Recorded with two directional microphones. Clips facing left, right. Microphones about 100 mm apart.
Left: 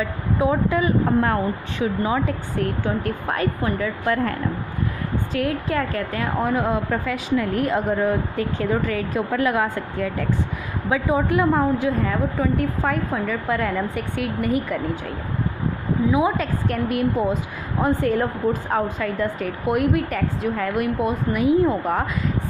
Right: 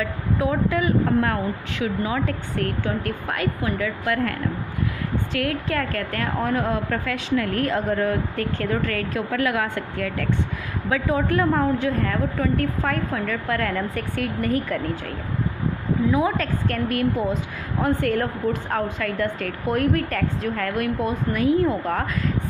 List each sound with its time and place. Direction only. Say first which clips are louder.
0.0 s speech: left 2 dB; 25° left (ahead or behind)
3.3 s a woman's voice: left 1 dB; 30° left (ahead or behind); by 14.8 s 10° left (ahead or behind)
16.1 s a woman's voice: left 2 dB; 15° left (ahead or behind)